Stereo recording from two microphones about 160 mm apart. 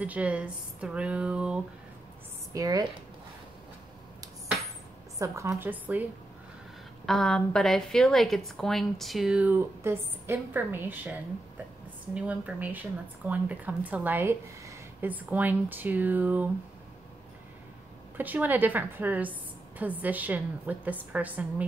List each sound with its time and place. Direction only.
0.0 s speech: 10° right (ahead or behind)
2.5 s speech: 25° right (ahead or behind)
5.2 s speech: 20° right (ahead or behind)
7.1 s a woman's voice: 5° left (ahead or behind)
18.1 s speech: 10° right (ahead or behind)